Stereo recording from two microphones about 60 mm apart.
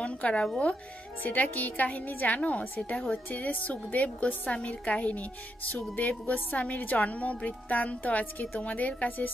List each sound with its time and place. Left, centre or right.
0.0 s speech: centre
1.2 s a woman's voice: left